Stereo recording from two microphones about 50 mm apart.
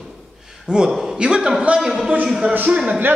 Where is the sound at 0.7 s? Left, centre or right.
Centre.